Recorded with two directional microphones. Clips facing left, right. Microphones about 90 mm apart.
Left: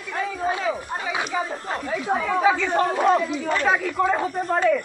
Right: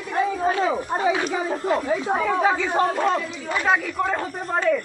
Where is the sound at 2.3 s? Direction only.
5° right (ahead or behind).